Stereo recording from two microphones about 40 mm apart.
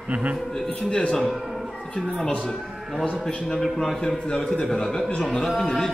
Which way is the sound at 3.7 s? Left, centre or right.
Centre.